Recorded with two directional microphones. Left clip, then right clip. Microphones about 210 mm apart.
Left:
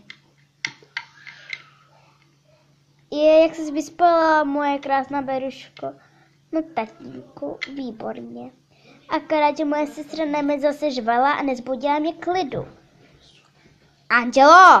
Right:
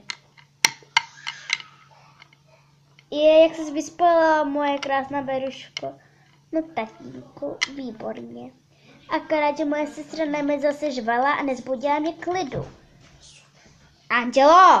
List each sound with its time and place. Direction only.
3.1 s a sound: 10° left (ahead or behind)
3.5 s speech: 50° left (ahead or behind)
3.9 s a woman's voice: 10° left (ahead or behind)
6.5 s a woman's voice: 10° left (ahead or behind)
14.0 s a woman's voice: 10° left (ahead or behind)